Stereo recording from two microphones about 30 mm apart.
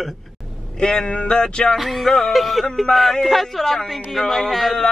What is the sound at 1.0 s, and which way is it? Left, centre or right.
Speech, left.